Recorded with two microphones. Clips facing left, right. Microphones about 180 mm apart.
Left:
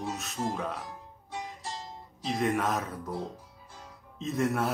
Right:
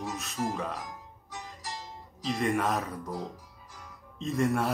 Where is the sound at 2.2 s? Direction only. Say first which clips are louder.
Even; centre (ahead or behind).